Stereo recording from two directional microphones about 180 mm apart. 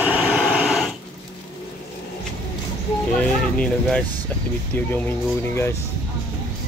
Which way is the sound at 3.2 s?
5° left (ahead or behind).